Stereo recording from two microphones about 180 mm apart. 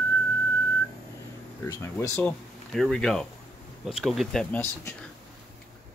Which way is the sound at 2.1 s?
5° left (ahead or behind).